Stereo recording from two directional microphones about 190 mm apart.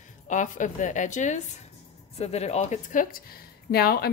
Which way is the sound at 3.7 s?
55° left (ahead or behind).